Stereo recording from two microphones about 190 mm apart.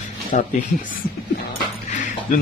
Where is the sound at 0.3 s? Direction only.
40° left (ahead or behind).